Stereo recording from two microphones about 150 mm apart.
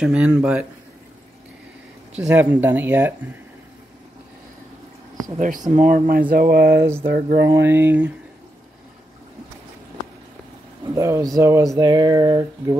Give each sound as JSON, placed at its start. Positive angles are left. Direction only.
{"t": 0.0, "sound": "speech", "side_deg": -5}
{"t": 2.1, "sound": "speech", "side_deg": -10}
{"t": 5.2, "sound": "speech", "side_deg": -60}
{"t": 6.3, "sound": "speech", "side_deg": -80}
{"t": 7.1, "sound": "speech", "side_deg": -70}
{"t": 7.5, "sound": "speech", "side_deg": -15}
{"t": 11.0, "sound": "speech", "side_deg": -20}